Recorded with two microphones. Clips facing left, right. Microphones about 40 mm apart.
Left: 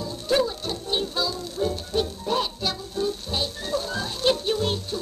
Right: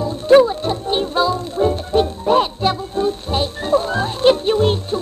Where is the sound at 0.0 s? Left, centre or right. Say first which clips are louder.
Right 12 dB; right.